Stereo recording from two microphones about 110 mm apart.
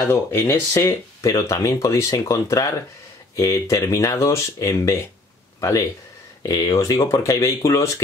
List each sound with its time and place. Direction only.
0.1 s speech: 25° left (ahead or behind)